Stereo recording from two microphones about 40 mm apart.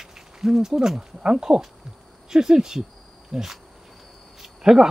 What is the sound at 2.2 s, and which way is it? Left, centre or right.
Speech, centre.